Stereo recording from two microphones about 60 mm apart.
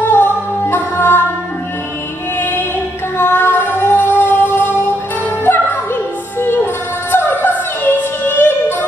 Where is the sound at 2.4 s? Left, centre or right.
Left.